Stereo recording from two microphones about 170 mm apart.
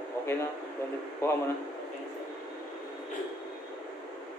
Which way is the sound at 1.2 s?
15° left (ahead or behind).